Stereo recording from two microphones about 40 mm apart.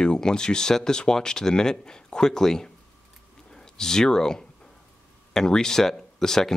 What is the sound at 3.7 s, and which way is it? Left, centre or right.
Speech, centre.